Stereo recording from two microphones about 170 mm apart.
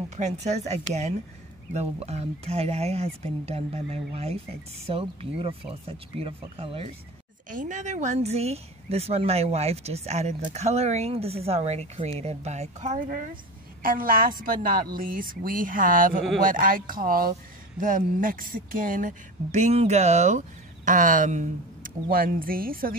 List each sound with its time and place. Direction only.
0.1 s speech: 40° right (ahead or behind)
7.4 s a woman's voice: 50° right (ahead or behind)